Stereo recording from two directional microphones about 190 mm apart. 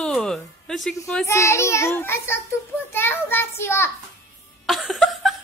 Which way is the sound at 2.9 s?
10° left (ahead or behind).